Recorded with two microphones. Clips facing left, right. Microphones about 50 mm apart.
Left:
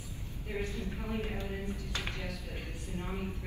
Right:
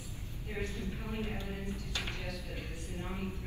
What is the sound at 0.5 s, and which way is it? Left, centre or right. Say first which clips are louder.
Speech: left 2 dB; left.